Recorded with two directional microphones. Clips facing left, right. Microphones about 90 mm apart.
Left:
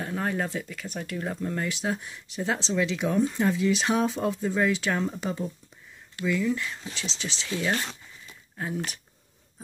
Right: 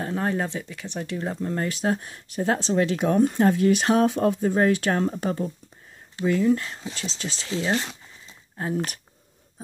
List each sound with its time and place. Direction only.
0.0 s speech: 30° right (ahead or behind)
1.5 s speech: 40° right (ahead or behind)
7.4 s speech: 25° right (ahead or behind)
8.3 s a sound: 30° right (ahead or behind)
8.7 s speech: 50° right (ahead or behind)